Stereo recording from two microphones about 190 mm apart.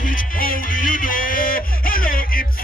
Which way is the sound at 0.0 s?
45° left (ahead or behind).